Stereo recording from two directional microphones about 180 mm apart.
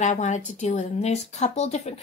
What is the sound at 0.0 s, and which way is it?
A woman's voice, 40° left (ahead or behind).